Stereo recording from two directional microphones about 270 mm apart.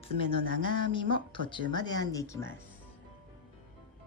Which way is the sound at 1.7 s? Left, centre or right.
Centre.